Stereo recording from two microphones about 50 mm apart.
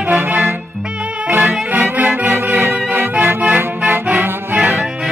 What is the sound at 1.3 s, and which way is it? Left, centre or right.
Accordion, right.